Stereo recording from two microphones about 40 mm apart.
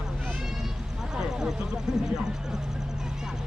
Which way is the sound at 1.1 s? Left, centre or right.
Centre.